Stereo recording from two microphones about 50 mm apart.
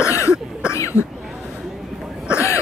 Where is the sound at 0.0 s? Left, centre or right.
Left.